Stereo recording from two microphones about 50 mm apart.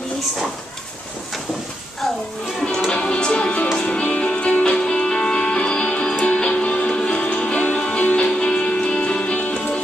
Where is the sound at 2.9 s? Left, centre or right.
Centre.